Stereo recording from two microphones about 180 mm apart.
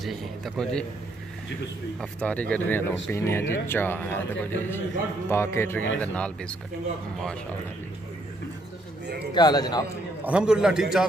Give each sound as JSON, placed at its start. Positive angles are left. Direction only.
{"t": 0.0, "sound": "a man's voice", "side_deg": 0}
{"t": 2.0, "sound": "speech", "side_deg": 5}
{"t": 9.3, "sound": "a man's voice", "side_deg": 25}
{"t": 10.2, "sound": "a man's voice", "side_deg": -5}